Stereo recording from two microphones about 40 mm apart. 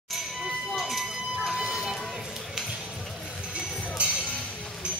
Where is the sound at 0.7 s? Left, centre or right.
Centre.